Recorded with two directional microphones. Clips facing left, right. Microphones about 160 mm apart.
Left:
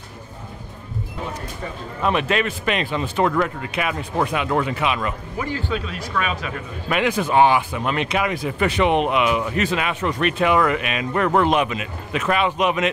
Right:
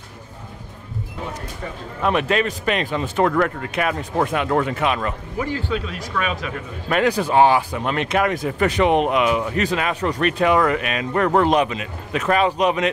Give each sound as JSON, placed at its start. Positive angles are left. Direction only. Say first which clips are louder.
{"t": 2.0, "sound": "speech", "louder": "right 1 dB", "side_deg": -60}
{"t": 2.2, "sound": "speech", "louder": "right 1 dB", "side_deg": -40}
{"t": 6.9, "sound": "speech", "louder": "right 2 dB", "side_deg": -40}